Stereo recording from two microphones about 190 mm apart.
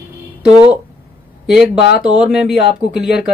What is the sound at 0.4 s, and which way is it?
Speech, 5° right (ahead or behind).